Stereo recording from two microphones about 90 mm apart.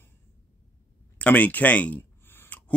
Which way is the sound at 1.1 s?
15° left (ahead or behind).